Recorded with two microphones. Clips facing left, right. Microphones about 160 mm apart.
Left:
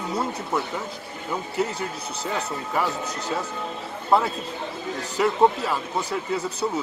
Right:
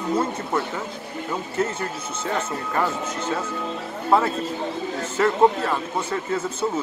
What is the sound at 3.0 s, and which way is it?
Speech, 40° left (ahead or behind).